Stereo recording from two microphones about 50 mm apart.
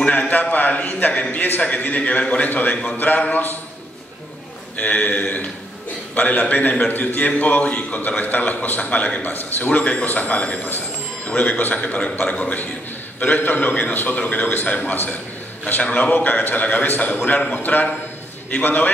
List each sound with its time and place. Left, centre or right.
0.0 s a sound: left
0.3 s a man's voice: left
1.3 s a sound: left
1.6 s a man's voice: left
4.7 s a man's voice: left
9.3 s a man's voice: left
13.2 s a man's voice: left